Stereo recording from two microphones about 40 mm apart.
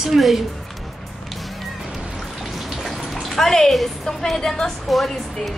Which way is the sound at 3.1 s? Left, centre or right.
Centre.